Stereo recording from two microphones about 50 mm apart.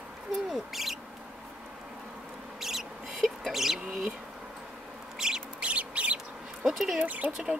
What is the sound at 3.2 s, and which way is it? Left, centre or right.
Rodents, centre.